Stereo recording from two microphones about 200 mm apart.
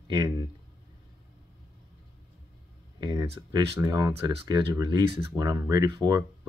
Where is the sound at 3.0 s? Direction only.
20° right (ahead or behind).